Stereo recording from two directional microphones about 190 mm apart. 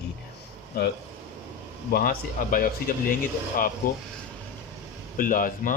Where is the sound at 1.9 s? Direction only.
50° left (ahead or behind).